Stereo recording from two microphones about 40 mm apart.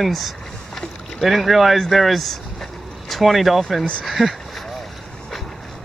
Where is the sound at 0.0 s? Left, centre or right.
Centre.